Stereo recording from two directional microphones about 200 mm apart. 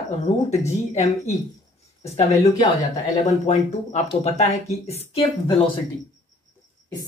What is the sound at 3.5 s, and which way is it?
Speech, 35° left (ahead or behind).